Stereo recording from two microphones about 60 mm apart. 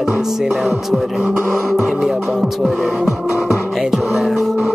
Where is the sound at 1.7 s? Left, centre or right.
Centre.